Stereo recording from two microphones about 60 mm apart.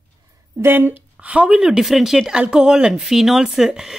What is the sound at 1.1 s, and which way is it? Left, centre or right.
Speech, right.